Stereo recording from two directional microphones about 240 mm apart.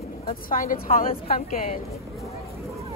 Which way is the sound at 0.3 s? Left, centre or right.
Left.